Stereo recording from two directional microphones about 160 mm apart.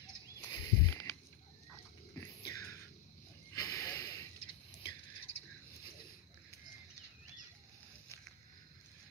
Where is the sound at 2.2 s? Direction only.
25° left (ahead or behind).